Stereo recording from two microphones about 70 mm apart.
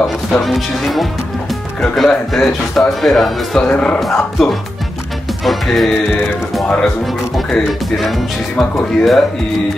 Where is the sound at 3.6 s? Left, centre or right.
Centre.